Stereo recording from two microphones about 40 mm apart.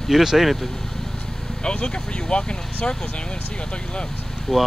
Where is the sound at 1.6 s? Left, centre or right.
Left.